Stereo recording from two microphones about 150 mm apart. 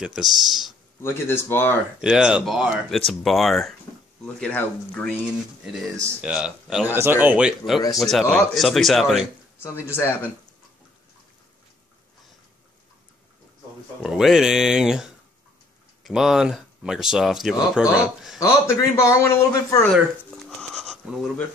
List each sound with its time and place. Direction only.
0.0 s speech: 5° right (ahead or behind)
1.0 s speech: 15° left (ahead or behind)
2.0 s speech: 5° right (ahead or behind)
5.2 s speech: 5° right (ahead or behind)
9.6 s speech: 15° left (ahead or behind)
14.0 s speech: 5° right (ahead or behind)
18.4 s a man's voice: 20° left (ahead or behind)
20.4 s bleat: centre (ahead or behind)